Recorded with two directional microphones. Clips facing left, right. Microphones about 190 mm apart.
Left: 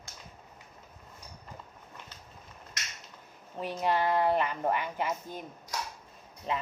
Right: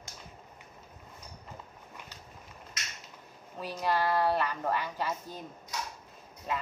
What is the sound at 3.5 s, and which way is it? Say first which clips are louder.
A child's voice: left 2 dB; 20° left (ahead or behind).